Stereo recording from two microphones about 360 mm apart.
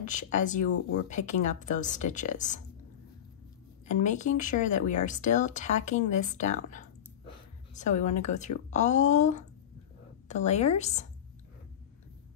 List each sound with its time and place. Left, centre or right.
0.0 s speech: left
3.8 s speech: centre